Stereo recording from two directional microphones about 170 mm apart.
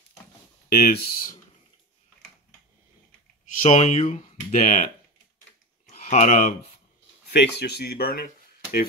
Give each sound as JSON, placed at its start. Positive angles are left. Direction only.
{"t": 0.7, "sound": "speech", "side_deg": 60}
{"t": 3.6, "sound": "speech", "side_deg": 40}
{"t": 5.9, "sound": "a sound", "side_deg": 40}
{"t": 7.2, "sound": "speech", "side_deg": 70}